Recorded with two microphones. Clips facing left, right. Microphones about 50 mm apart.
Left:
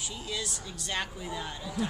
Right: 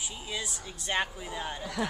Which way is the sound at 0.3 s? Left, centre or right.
Right.